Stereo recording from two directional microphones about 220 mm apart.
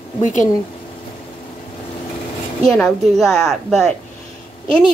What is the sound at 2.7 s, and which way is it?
A woman's voice, centre (ahead or behind).